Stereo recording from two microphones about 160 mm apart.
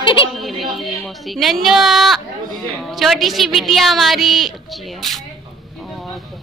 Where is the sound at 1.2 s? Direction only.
Centre (ahead or behind).